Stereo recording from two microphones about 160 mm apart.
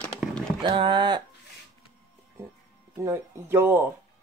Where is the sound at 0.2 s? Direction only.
5° right (ahead or behind).